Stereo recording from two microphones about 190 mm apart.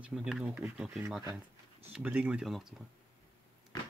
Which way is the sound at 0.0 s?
5° right (ahead or behind).